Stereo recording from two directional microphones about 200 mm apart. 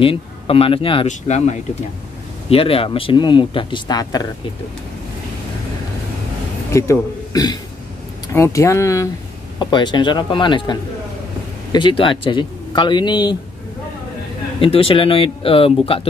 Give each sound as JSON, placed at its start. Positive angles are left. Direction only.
{"t": 0.0, "sound": "speech", "side_deg": 25}
{"t": 6.7, "sound": "a man's voice", "side_deg": 15}
{"t": 14.6, "sound": "speech", "side_deg": 30}